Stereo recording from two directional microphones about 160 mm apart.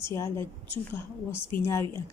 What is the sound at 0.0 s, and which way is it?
Speech, 15° left (ahead or behind).